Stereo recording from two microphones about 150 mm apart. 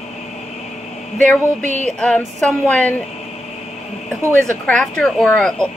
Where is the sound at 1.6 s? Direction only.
55° right (ahead or behind).